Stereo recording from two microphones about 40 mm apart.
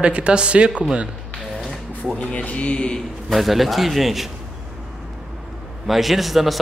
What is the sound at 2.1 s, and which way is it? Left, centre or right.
Speech, left.